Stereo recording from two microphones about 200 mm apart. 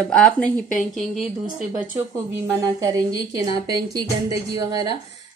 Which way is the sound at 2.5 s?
15° right (ahead or behind).